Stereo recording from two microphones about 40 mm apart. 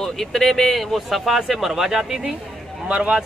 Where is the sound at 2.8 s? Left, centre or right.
Right.